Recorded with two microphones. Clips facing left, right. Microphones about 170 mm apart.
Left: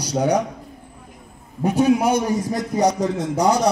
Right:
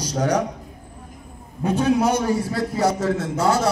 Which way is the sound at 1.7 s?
10° left (ahead or behind).